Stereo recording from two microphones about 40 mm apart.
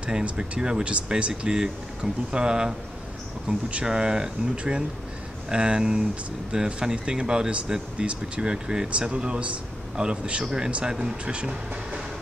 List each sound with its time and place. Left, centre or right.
0.2 s speech: right
3.5 s speech: right
3.8 s speech: centre
11.2 s speech: right